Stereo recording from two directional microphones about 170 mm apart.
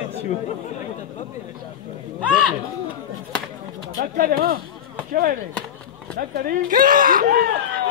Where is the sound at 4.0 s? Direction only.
60° right (ahead or behind).